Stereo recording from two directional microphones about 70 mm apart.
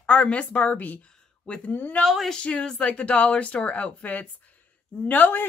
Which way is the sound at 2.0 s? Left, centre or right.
Centre.